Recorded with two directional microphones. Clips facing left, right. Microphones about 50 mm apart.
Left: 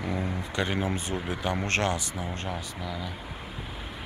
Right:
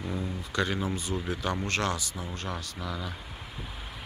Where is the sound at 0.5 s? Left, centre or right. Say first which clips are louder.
Even; left.